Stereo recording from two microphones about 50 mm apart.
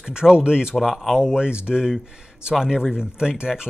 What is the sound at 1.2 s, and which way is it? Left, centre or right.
Speech, centre.